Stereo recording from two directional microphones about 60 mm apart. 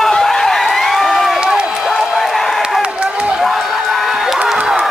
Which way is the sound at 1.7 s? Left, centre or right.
Centre.